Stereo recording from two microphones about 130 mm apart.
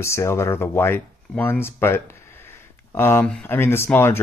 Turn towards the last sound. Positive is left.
turn(degrees=20)  # may be behind; listen again after turning